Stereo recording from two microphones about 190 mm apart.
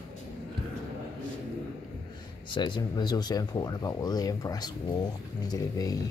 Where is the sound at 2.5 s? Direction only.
25° left (ahead or behind).